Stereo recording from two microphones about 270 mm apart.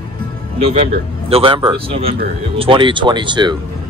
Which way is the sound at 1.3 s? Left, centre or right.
Centre.